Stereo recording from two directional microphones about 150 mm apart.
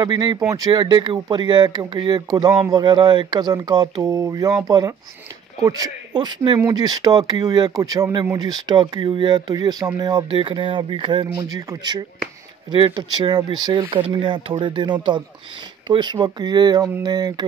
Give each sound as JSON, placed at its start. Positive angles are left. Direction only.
{"t": 0.0, "sound": "speech", "side_deg": -30}